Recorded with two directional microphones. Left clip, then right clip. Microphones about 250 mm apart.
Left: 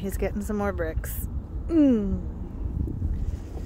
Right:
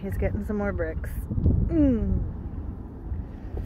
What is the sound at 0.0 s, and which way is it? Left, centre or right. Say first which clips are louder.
Speech: left 1 dB; centre.